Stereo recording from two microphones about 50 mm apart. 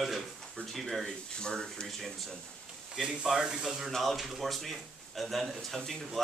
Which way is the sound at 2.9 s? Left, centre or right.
Centre.